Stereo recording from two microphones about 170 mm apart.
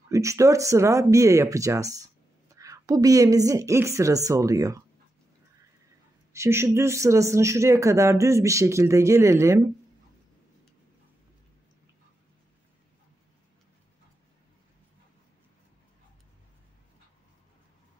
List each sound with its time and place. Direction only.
0.1 s a woman's voice: 20° right (ahead or behind)
6.3 s speech: 15° right (ahead or behind)